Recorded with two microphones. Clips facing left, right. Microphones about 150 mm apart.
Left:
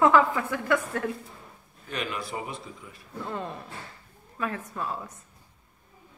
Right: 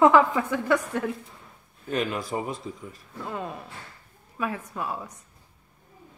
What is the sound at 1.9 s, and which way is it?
Speech, 45° right (ahead or behind).